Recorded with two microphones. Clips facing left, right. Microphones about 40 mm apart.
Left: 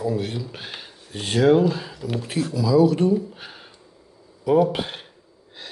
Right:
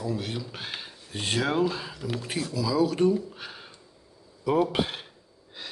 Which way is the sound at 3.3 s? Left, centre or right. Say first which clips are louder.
Left 1 dB; centre.